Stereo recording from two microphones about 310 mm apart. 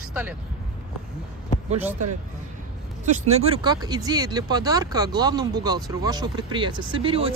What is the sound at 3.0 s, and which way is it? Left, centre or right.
Speech, right.